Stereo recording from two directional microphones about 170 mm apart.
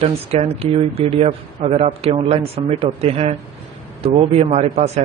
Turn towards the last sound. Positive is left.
turn(degrees=-40)  # may be behind; listen again after turning